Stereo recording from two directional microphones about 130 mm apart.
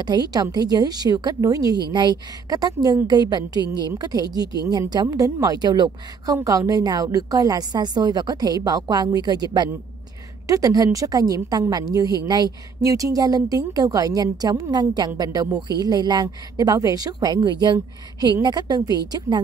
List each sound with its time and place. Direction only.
0.0 s a woman's voice: 30° right (ahead or behind)